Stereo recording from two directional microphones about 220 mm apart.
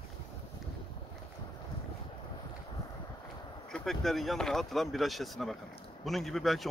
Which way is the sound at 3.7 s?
Centre (ahead or behind).